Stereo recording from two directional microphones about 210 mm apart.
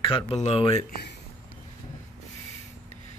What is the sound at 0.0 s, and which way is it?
Speech, 25° left (ahead or behind).